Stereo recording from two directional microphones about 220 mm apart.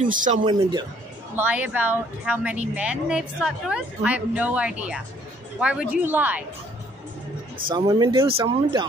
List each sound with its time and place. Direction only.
0.0 s speech: 35° right (ahead or behind)
0.5 s speech: 20° right (ahead or behind)
1.3 s speech: 10° right (ahead or behind)
7.7 s speech: 20° right (ahead or behind)